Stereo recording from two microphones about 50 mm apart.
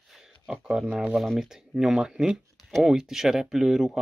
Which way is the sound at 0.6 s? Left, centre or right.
Centre.